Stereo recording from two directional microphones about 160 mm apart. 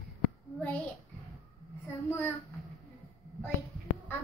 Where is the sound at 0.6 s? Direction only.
10° left (ahead or behind).